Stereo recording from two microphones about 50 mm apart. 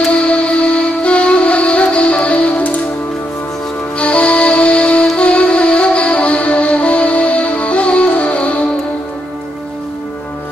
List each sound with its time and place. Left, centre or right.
0.1 s music: left
4.0 s music: left